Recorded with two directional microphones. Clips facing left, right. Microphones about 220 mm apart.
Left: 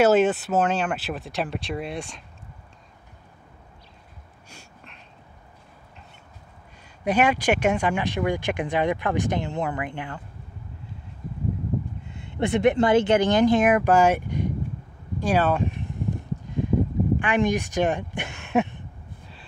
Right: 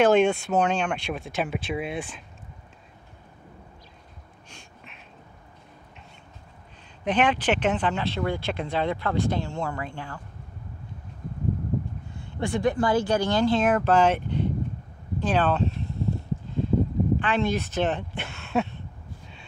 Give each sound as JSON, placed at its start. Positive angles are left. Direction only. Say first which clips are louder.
{"t": 0.0, "sound": "speech", "louder": "left 1 dB", "side_deg": 5}
{"t": 7.1, "sound": "speech", "louder": "left 2 dB", "side_deg": 10}
{"t": 12.4, "sound": "speech", "louder": "left 4 dB", "side_deg": 20}
{"t": 15.1, "sound": "a sound", "louder": "left 1 dB", "side_deg": 10}
{"t": 17.2, "sound": "speech", "louder": "left 3 dB", "side_deg": 15}